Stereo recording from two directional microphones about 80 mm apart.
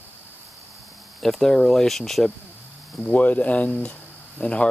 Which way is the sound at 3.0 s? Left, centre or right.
Centre.